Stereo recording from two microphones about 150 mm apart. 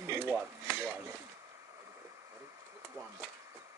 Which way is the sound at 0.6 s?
5° left (ahead or behind).